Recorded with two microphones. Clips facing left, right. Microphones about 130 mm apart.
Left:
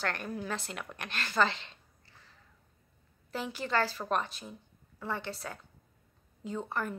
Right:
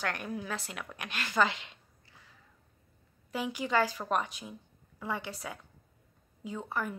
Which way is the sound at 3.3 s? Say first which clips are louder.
Right 2 dB; 10° right (ahead or behind).